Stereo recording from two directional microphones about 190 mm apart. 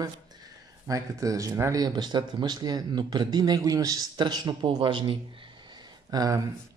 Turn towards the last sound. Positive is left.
turn(degrees=-20)  # may be behind; listen again after turning